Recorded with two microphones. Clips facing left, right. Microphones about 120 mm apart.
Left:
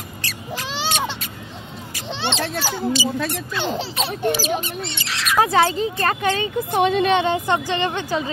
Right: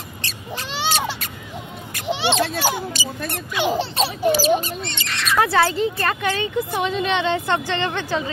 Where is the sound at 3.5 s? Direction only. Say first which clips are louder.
Right 8 dB; 15° right (ahead or behind).